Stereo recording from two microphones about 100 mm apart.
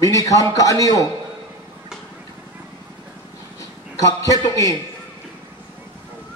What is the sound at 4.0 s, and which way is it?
Speech, 35° left (ahead or behind).